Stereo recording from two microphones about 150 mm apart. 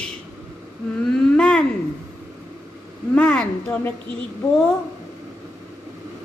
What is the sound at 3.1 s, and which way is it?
Speech, 10° left (ahead or behind).